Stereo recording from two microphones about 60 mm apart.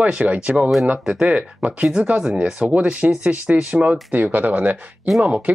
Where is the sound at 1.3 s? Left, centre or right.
Centre.